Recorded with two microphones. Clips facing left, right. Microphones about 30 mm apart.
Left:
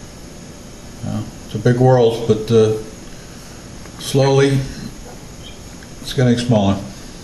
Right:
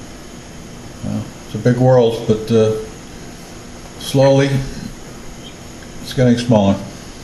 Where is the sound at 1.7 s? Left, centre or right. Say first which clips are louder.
Right 1 dB; centre.